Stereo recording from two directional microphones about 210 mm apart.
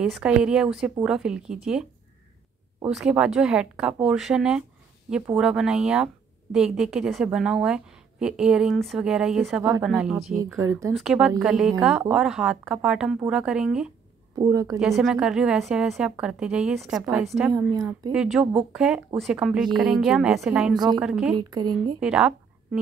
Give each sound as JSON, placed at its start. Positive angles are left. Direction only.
{"t": 0.0, "sound": "a woman's voice", "side_deg": -5}
{"t": 9.6, "sound": "speech", "side_deg": -15}
{"t": 9.8, "sound": "a woman's voice", "side_deg": -5}
{"t": 10.6, "sound": "speech", "side_deg": -15}
{"t": 11.0, "sound": "a woman's voice", "side_deg": 0}
{"t": 14.4, "sound": "speech", "side_deg": -15}
{"t": 14.8, "sound": "a woman's voice", "side_deg": 0}
{"t": 17.5, "sound": "speech", "side_deg": -15}
{"t": 18.1, "sound": "a woman's voice", "side_deg": -5}
{"t": 20.7, "sound": "a woman's voice", "side_deg": -20}
{"t": 21.0, "sound": "a woman's voice", "side_deg": -5}
{"t": 21.4, "sound": "a woman's voice", "side_deg": -20}
{"t": 22.0, "sound": "speech", "side_deg": -5}